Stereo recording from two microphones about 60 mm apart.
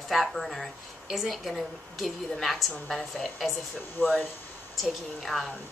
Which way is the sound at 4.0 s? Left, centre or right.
Left.